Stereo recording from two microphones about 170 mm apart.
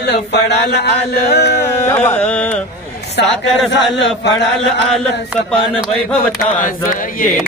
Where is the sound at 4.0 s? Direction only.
90° left.